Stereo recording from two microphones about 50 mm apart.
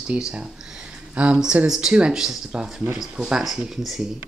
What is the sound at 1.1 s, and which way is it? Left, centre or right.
Speech, right.